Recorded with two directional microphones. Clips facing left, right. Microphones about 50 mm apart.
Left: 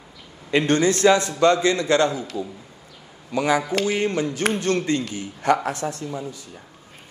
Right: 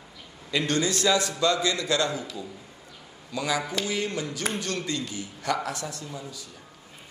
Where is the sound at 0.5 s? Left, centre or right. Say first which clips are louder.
Left 7 dB; left.